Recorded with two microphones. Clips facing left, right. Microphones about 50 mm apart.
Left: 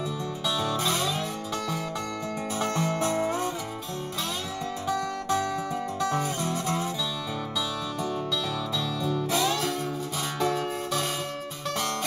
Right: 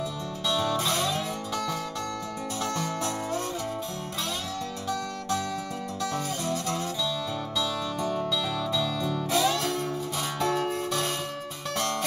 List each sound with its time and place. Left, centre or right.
0.5 s music: centre
2.6 s music: left
4.8 s music: left
8.5 s music: centre